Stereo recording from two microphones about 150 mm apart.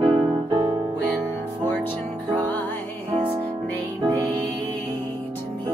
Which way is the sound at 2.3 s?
10° left (ahead or behind).